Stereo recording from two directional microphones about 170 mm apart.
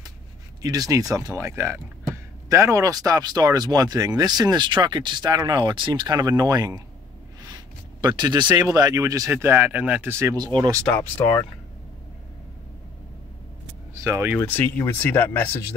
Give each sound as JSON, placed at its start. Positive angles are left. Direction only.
{"t": 0.6, "sound": "speech", "side_deg": -20}
{"t": 10.9, "sound": "speech", "side_deg": 10}
{"t": 14.0, "sound": "speech", "side_deg": -20}
{"t": 14.4, "sound": "speech", "side_deg": 15}